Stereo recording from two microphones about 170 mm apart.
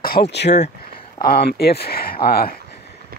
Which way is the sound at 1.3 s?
65° left (ahead or behind).